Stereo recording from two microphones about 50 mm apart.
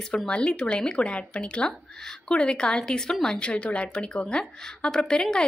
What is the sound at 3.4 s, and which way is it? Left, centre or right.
Speech, left.